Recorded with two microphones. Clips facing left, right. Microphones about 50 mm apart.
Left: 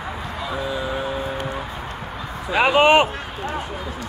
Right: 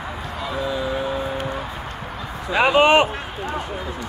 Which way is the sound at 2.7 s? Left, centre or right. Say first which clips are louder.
Even; left.